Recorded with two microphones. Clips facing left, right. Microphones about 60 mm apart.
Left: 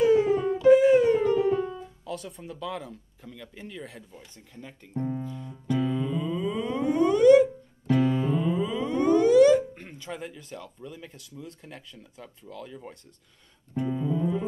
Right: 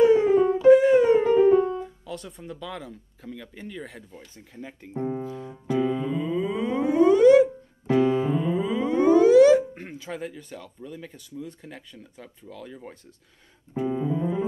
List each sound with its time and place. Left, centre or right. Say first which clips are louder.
0.0 s music: right 4 dB; centre
1.2 s music: right 6 dB; right
1.8 s speech: right 2 dB; centre
4.4 s speech: right 5 dB; centre
5.7 s music: right 2 dB; centre
8.0 s music: right 4 dB; right
8.4 s a sound: right 2 dB; centre
9.9 s speech: right 3 dB; centre
13.8 s music: right 2 dB; right